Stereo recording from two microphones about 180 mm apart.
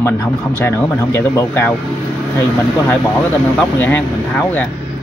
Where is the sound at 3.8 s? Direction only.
10° left (ahead or behind).